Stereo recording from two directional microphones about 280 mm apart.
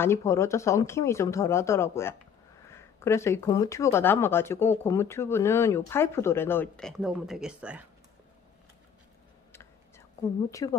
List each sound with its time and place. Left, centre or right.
0.0 s speech: centre
9.5 s whispering: centre
10.6 s speech: centre